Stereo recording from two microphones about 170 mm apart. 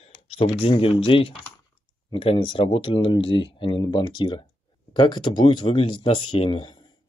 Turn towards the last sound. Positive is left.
turn(degrees=30)  # may be behind; listen again after turning